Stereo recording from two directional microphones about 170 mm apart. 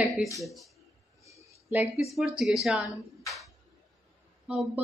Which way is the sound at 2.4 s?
Centre (ahead or behind).